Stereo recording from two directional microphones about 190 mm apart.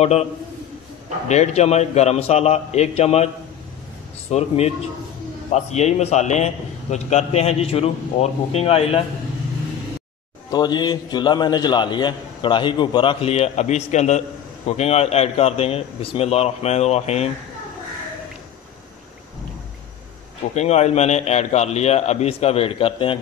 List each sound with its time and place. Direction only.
0.0 s a man's voice: 35° left (ahead or behind)
1.3 s a man's voice: 35° left (ahead or behind)
4.3 s a man's voice: 35° left (ahead or behind)
10.5 s a man's voice: 20° left (ahead or behind)
20.5 s a man's voice: 35° left (ahead or behind)